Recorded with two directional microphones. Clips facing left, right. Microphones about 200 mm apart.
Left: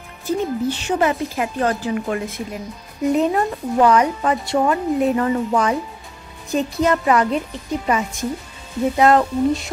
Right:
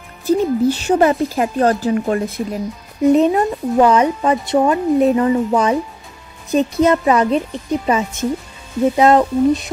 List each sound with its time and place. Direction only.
0.3 s speech: 40° right (ahead or behind)
3.2 s a woman's voice: 20° right (ahead or behind)